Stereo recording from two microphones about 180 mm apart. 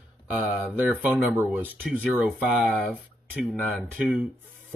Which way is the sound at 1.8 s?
5° left (ahead or behind).